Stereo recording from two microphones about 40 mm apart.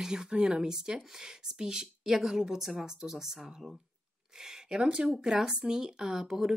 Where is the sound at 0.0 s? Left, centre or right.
Centre.